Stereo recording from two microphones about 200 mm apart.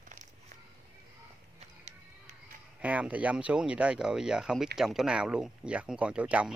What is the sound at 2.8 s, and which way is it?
Speech, 5° right (ahead or behind).